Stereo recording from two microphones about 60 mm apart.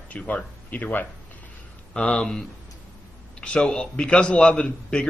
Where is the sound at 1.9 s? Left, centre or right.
Centre.